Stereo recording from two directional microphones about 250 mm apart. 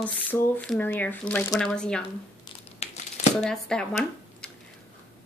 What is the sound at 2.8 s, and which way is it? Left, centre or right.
Crumpling, left.